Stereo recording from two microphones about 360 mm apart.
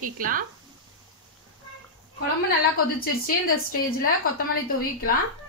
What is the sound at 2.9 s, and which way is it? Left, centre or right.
A woman's voice, left.